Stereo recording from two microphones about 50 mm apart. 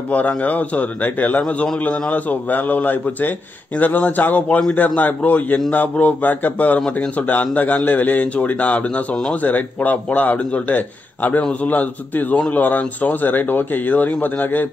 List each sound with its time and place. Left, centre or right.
0.1 s speech: left